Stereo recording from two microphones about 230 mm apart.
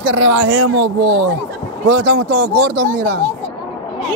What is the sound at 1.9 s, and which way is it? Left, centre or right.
Speech, right.